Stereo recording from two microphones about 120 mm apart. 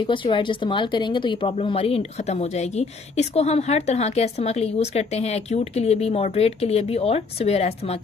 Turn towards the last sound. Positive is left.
turn(degrees=60)  # may be behind; listen again after turning